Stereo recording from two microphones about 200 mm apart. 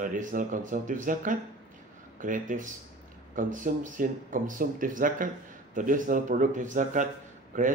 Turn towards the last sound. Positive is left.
turn(degrees=-40)  # may be behind; listen again after turning